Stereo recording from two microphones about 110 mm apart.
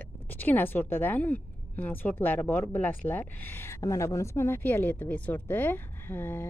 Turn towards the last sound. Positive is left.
turn(degrees=20)  # may be behind; listen again after turning